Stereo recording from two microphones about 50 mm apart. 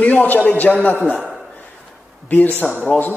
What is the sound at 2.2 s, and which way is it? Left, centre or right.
Speech, left.